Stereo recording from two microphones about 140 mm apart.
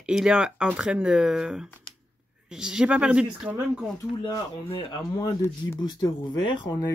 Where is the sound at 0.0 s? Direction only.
5° right (ahead or behind).